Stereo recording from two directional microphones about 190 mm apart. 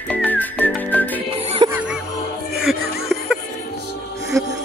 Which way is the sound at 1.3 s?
35° right (ahead or behind).